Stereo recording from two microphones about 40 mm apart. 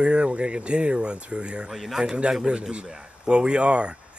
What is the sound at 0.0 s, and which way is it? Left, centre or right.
Speech, right.